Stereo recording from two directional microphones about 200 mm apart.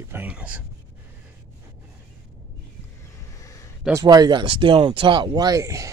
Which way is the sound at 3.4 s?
15° left (ahead or behind).